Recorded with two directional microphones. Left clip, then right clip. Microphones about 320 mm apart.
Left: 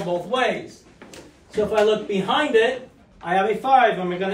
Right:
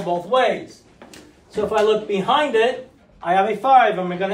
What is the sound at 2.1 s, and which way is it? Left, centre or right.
A man's voice, centre.